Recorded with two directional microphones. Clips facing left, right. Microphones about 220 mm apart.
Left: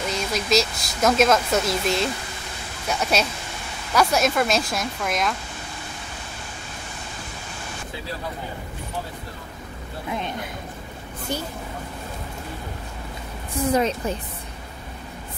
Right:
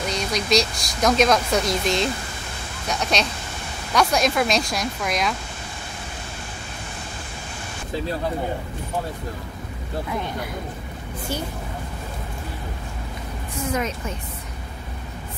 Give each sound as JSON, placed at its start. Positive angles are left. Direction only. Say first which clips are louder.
{"t": 0.1, "sound": "speech", "louder": "right 1 dB", "side_deg": 5}
{"t": 10.0, "sound": "speech", "louder": "left 2 dB", "side_deg": 20}
{"t": 13.7, "sound": "a woman's voice", "louder": "left 5 dB", "side_deg": 35}